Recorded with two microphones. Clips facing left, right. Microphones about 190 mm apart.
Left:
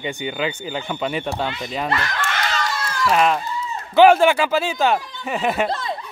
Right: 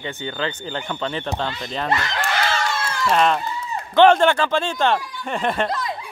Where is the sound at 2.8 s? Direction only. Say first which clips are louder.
Left 1 dB; 25° right (ahead or behind).